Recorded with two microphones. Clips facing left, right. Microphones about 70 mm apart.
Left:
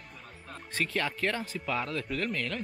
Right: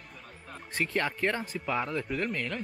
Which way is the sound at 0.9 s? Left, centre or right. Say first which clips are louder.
Right 2 dB; centre.